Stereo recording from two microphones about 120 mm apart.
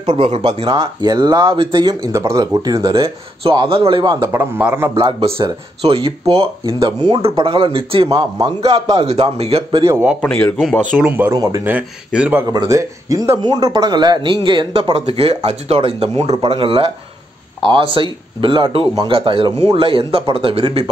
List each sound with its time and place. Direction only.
0.0 s speech: 65° right (ahead or behind)
0.4 s speech: 45° right (ahead or behind)
2.1 s speech: 25° right (ahead or behind)
3.4 s speech: 50° right (ahead or behind)
4.2 s speech: 20° right (ahead or behind)
4.9 s speech: 45° right (ahead or behind)
9.0 s speech: 60° right (ahead or behind)
10.2 s a man's voice: 10° left (ahead or behind)
11.1 s speech: 15° right (ahead or behind)
11.3 s speech: 25° right (ahead or behind)
11.6 s speech: 10° right (ahead or behind)
12.4 s speech: 30° right (ahead or behind); by 20.9 s 50° right (ahead or behind)